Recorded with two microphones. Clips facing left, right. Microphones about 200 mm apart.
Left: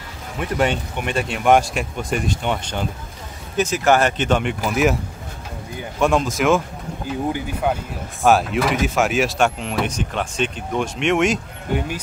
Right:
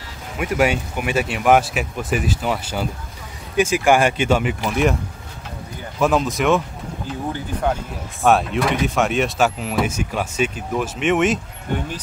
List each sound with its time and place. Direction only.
0.4 s speech: 10° right (ahead or behind)
5.9 s speech: centre (ahead or behind)
7.7 s speech: 5° left (ahead or behind)